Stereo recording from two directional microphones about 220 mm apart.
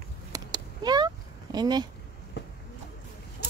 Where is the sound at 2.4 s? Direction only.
50° left (ahead or behind).